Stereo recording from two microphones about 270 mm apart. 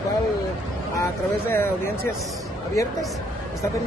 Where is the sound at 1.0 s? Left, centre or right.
Centre.